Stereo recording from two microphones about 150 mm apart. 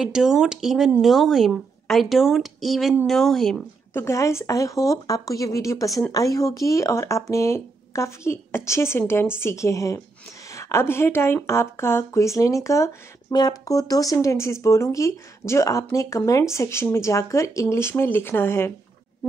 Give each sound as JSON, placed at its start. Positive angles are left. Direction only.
{"t": 0.0, "sound": "speech", "side_deg": -5}
{"t": 3.9, "sound": "speech", "side_deg": 20}